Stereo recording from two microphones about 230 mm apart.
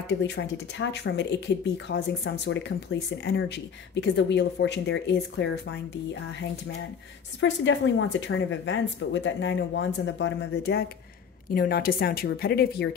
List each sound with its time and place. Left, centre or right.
0.2 s speech: left
7.3 s speech: left